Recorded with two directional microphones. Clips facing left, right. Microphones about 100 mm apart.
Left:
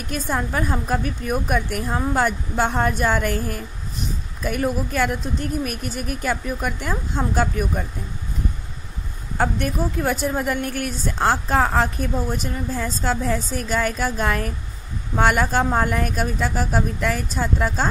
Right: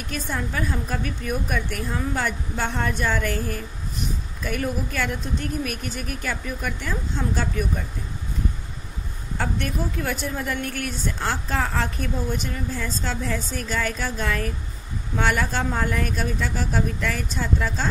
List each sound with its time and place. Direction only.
0.1 s a woman's voice: 40° left (ahead or behind)
4.6 s a woman's voice: 40° left (ahead or behind)
9.4 s a woman's voice: 45° left (ahead or behind)